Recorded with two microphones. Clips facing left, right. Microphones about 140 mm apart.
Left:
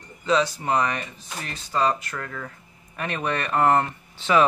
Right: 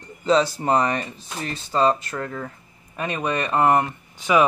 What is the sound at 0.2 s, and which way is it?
Speech, 35° right (ahead or behind).